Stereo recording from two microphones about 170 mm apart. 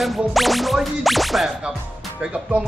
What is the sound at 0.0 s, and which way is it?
Speech, centre (ahead or behind).